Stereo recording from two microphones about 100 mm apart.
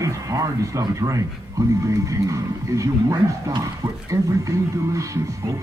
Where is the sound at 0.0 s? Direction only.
35° right (ahead or behind).